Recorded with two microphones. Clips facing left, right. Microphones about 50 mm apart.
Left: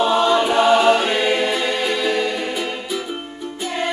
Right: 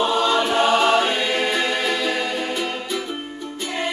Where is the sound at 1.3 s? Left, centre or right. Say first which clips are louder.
Left 2 dB; centre.